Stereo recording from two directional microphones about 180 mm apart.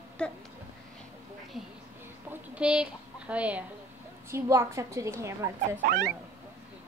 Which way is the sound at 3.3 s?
5° right (ahead or behind).